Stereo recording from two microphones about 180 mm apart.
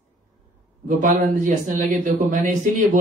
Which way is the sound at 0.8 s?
45° right (ahead or behind).